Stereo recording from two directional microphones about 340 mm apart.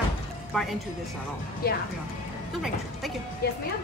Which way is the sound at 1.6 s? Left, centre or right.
Left.